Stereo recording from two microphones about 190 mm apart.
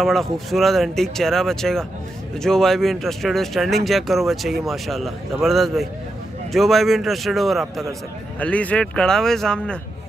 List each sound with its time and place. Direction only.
0.0 s speech: centre (ahead or behind)